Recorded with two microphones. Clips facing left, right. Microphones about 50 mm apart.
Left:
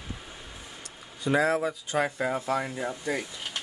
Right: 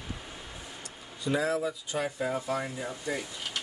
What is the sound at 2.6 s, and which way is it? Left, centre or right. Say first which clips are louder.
Speech: left 3 dB; left.